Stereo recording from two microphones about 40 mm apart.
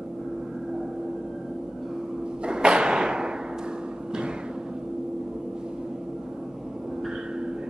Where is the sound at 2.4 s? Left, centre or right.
Right.